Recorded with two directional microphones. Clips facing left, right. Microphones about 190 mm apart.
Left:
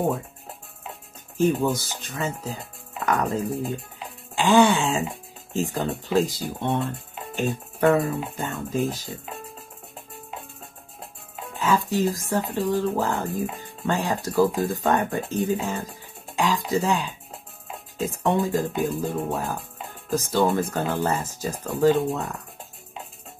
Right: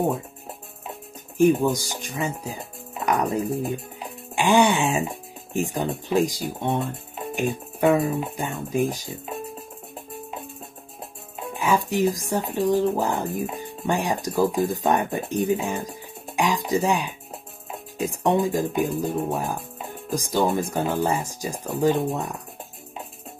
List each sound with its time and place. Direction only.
1.4 s speech: 15° right (ahead or behind)
11.5 s speech: 15° right (ahead or behind)